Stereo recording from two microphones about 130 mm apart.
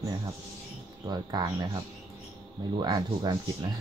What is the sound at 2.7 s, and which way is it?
Speech, 35° right (ahead or behind).